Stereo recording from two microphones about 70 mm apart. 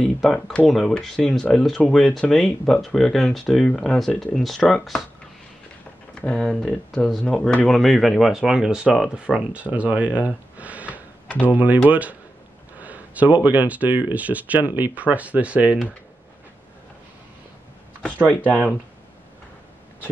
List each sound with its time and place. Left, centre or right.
0.0 s speech: centre
6.2 s speech: centre
18.2 s speech: centre